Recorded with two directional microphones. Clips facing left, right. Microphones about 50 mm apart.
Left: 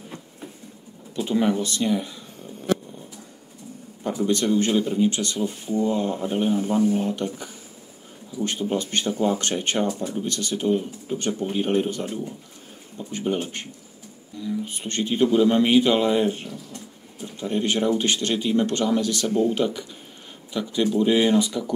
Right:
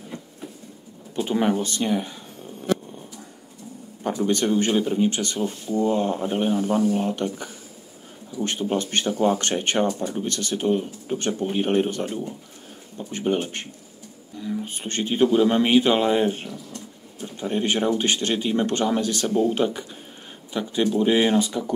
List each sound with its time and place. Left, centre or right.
1.1 s speech: right
4.0 s speech: right
8.5 s speech: right